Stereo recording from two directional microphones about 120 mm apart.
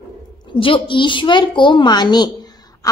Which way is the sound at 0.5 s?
45° left (ahead or behind).